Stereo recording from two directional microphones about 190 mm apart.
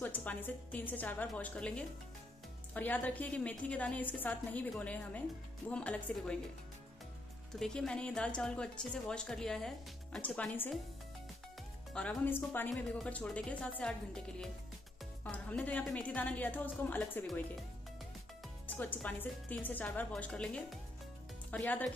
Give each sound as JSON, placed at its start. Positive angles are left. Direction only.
{"t": 0.0, "sound": "a woman's voice", "side_deg": 10}
{"t": 7.5, "sound": "speech", "side_deg": 0}
{"t": 11.9, "sound": "a woman's voice", "side_deg": 5}
{"t": 18.7, "sound": "a woman's voice", "side_deg": 10}